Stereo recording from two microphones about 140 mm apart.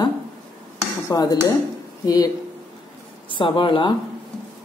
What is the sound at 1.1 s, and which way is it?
Dishes, 25° left (ahead or behind).